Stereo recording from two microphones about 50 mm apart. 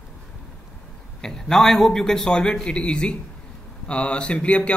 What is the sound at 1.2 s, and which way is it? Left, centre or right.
A man's voice, centre.